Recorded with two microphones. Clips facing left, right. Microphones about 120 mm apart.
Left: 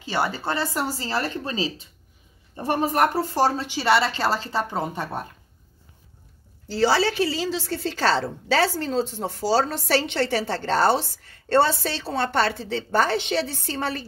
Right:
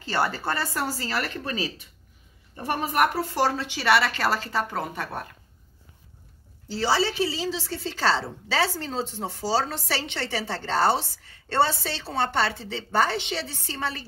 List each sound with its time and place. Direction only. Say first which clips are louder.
0.0 s speech: left 1 dB; 15° left (ahead or behind)
6.7 s a woman's voice: left 4 dB; 60° left (ahead or behind)
7.4 s a woman's voice: left 3 dB; 45° left (ahead or behind)